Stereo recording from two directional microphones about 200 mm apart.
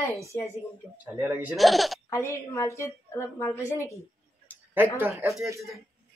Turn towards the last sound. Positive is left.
turn(degrees=-10)  # may be behind; listen again after turning